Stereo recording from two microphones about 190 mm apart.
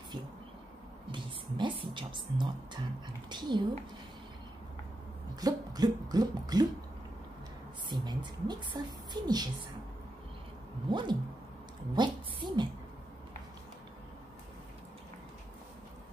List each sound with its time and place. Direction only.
1.1 s a woman's voice: 25° right (ahead or behind)
5.3 s a woman's voice: 20° right (ahead or behind)
7.9 s a woman's voice: 20° right (ahead or behind)
10.9 s a woman's voice: 25° right (ahead or behind)